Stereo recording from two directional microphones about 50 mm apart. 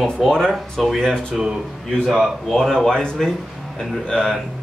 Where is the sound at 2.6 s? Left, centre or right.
Centre.